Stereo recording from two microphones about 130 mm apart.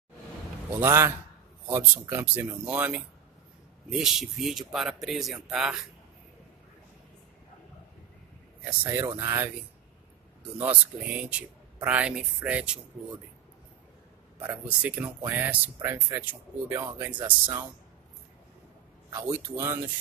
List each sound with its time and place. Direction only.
0.7 s a man's voice: 20° right (ahead or behind)
3.9 s speech: centre (ahead or behind)
8.8 s a man's voice: 25° right (ahead or behind)
10.6 s speech: 10° right (ahead or behind)
14.4 s speech: 10° right (ahead or behind)
17.2 s a man's voice: 25° right (ahead or behind)
19.0 s a man's voice: 20° right (ahead or behind)